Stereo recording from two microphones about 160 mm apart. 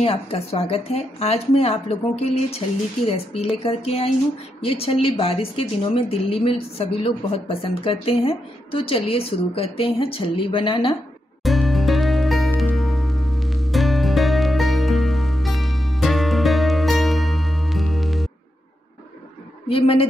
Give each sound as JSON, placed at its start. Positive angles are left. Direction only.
{"t": 0.0, "sound": "speech", "side_deg": 35}
{"t": 3.3, "sound": "speech", "side_deg": 40}
{"t": 11.4, "sound": "music", "side_deg": 0}
{"t": 19.7, "sound": "speech", "side_deg": 35}